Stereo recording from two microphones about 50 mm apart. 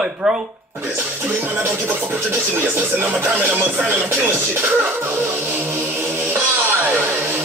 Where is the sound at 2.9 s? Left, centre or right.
Right.